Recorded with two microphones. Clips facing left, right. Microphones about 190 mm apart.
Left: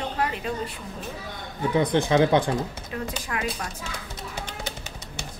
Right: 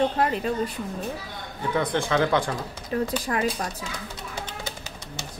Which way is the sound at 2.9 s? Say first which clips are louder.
Right 7 dB; 35° right (ahead or behind).